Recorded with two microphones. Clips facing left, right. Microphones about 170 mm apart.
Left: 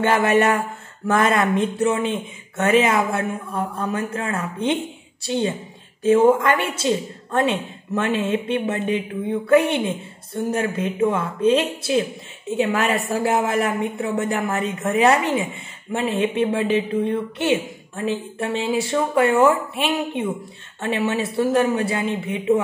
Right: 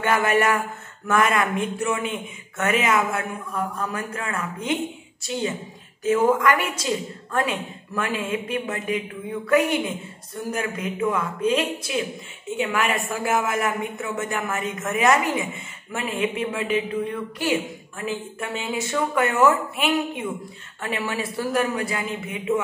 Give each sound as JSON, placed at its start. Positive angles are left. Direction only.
{"t": 0.0, "sound": "a woman's voice", "side_deg": 30}